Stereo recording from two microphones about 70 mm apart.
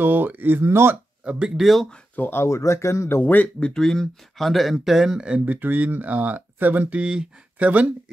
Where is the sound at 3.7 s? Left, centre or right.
Centre.